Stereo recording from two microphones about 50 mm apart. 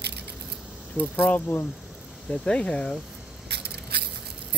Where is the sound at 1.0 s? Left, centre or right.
Left.